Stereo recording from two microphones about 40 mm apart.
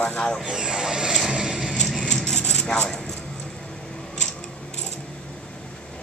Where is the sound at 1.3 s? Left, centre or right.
Right.